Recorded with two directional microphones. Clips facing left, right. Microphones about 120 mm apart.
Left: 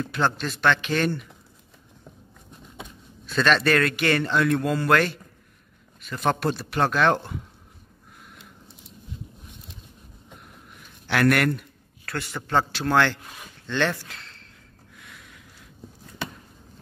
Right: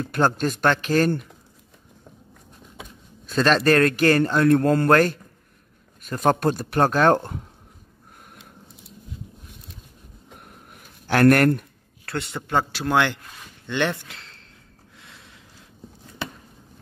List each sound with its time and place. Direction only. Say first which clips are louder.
0.0 s speech: right 4 dB; 45° right (ahead or behind)
3.3 s a man's voice: right 3 dB; 35° right (ahead or behind)
10.4 s a sound: right 1 dB; 45° right (ahead or behind)
12.1 s a man's voice: right 2 dB; 25° right (ahead or behind)
12.4 s speech: even; 10° right (ahead or behind)
15.0 s a sound: left 1 dB; 25° right (ahead or behind)